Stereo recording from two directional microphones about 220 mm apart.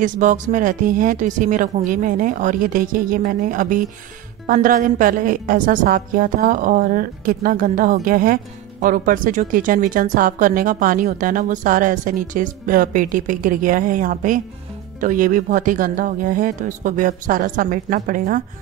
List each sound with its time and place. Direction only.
0.0 s a woman's voice: 35° right (ahead or behind)